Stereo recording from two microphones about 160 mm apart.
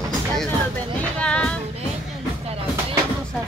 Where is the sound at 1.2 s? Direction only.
5° left (ahead or behind).